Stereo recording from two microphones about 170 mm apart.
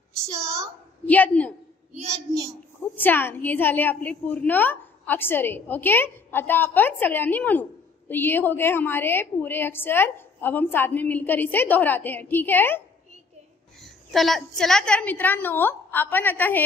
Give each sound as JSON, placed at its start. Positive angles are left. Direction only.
{"t": 0.2, "sound": "a woman's voice", "side_deg": -15}
{"t": 1.0, "sound": "a woman's voice", "side_deg": 10}
{"t": 3.0, "sound": "a woman's voice", "side_deg": 10}
{"t": 13.7, "sound": "a woman's voice", "side_deg": 0}